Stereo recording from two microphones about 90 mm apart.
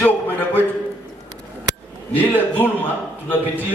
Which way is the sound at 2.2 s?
20° left (ahead or behind).